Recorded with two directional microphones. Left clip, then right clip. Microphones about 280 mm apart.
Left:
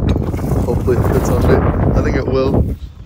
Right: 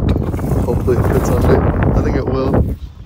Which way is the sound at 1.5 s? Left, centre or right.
Centre.